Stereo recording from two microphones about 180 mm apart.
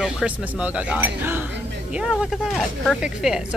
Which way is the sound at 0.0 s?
5° right (ahead or behind).